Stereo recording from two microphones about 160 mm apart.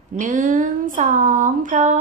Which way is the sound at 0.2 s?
55° right (ahead or behind).